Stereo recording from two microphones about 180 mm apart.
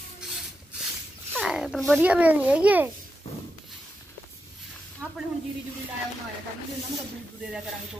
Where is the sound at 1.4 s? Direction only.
Centre (ahead or behind).